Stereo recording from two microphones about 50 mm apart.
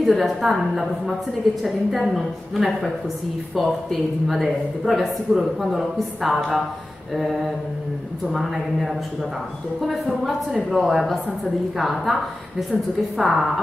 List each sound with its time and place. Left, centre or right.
0.0 s a man's voice: centre
8.3 s a man's voice: centre